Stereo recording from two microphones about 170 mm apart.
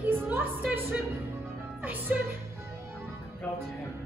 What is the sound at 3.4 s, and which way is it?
Music, 10° left (ahead or behind).